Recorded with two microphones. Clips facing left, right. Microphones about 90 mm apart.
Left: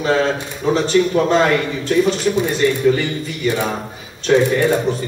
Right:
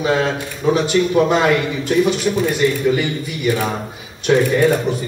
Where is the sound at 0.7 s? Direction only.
10° right (ahead or behind).